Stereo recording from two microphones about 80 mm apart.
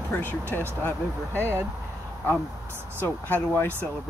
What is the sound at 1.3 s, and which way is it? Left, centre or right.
Speech, right.